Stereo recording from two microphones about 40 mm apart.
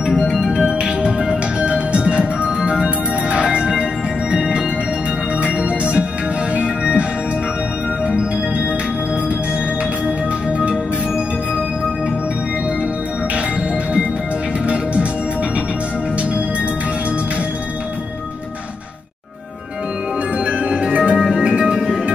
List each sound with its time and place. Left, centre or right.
0.5 s music: right
3.4 s music: centre
5.6 s organ: right
6.5 s music: right
20.3 s music: right
21.2 s music: centre